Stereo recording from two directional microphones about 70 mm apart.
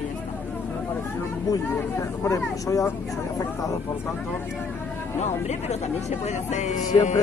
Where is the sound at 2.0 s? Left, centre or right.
Left.